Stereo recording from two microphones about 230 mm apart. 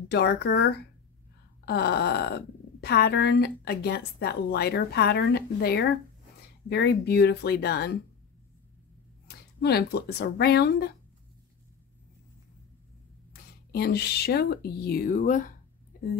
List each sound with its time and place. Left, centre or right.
0.1 s speech: left
9.6 s speech: left
13.3 s speech: left
15.9 s a sound: left